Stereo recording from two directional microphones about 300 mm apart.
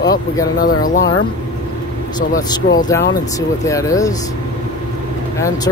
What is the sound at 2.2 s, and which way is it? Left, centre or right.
Speech, centre.